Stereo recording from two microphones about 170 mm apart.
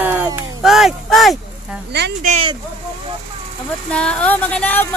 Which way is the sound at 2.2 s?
45° right (ahead or behind).